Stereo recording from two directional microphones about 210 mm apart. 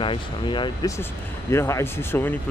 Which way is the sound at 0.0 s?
25° left (ahead or behind).